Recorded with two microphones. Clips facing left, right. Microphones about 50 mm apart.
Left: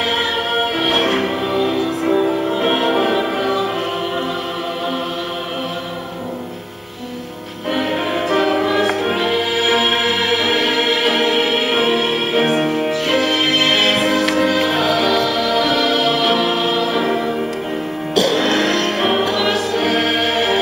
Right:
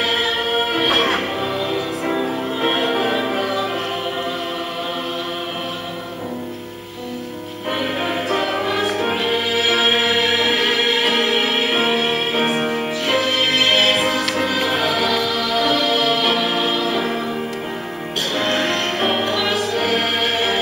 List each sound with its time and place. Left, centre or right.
1.0 s music: centre
8.1 s music: centre
11.1 s music: centre
16.9 s church bell: centre
18.5 s music: left
18.9 s music: centre
19.2 s music: centre